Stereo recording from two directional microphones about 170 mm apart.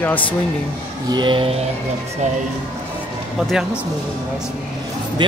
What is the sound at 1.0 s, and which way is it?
Speech, 25° right (ahead or behind).